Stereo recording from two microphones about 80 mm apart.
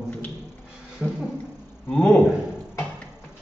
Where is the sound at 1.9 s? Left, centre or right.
Centre.